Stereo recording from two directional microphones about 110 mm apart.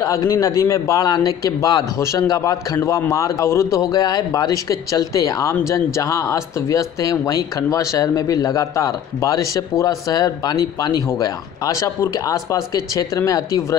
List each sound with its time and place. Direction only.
0.0 s speech: 30° left (ahead or behind)